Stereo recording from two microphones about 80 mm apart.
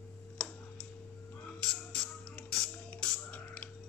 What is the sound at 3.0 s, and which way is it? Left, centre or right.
Music, centre.